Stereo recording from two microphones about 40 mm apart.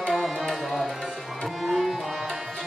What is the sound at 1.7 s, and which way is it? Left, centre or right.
Tabla, centre.